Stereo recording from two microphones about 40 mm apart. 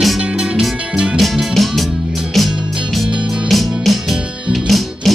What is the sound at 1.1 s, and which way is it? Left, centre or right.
Music, centre.